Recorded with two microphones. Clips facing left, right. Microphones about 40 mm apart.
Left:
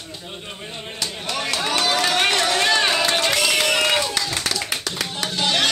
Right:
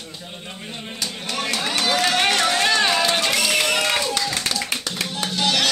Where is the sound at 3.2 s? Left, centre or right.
Left.